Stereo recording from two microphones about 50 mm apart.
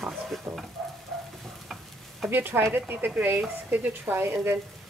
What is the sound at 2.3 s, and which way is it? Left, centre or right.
Speech, right.